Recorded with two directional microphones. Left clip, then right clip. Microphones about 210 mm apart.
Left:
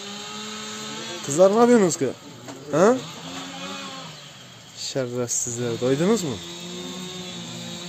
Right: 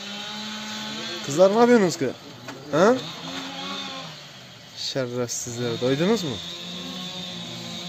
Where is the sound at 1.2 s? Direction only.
10° left (ahead or behind).